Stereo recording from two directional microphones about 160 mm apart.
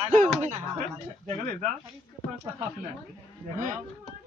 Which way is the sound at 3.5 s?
55° right (ahead or behind).